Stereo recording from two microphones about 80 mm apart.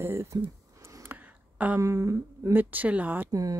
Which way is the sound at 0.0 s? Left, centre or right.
Right.